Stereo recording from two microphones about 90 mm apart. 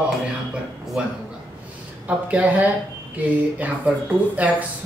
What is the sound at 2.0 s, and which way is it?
A man's voice, 15° right (ahead or behind).